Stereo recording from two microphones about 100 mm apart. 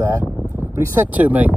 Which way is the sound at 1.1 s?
15° right (ahead or behind).